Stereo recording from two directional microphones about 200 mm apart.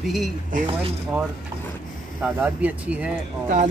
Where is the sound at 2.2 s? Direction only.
10° right (ahead or behind).